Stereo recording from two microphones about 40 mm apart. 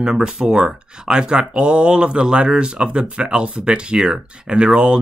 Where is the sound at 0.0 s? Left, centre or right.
Centre.